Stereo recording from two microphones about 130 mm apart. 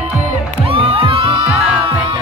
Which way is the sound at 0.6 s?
45° right (ahead or behind).